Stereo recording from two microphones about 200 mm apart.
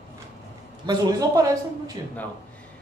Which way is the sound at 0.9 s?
20° right (ahead or behind).